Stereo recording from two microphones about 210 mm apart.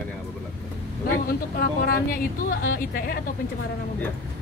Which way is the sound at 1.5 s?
45° left (ahead or behind).